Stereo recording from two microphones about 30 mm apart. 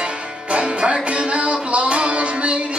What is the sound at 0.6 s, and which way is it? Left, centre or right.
Music, right.